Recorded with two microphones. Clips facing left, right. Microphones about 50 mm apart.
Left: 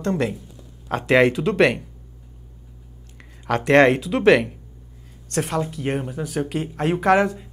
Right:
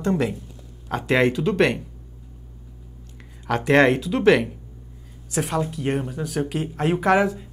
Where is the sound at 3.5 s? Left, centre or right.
Centre.